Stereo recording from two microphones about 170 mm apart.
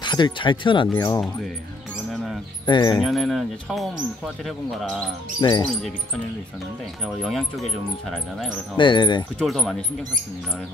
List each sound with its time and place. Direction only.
0.0 s speech: 25° left (ahead or behind)
2.6 s speech: 25° left (ahead or behind)
3.0 s speech: centre (ahead or behind)
5.4 s speech: 30° left (ahead or behind)
7.2 s speech: centre (ahead or behind)
8.7 s speech: 30° left (ahead or behind)
9.4 s speech: centre (ahead or behind)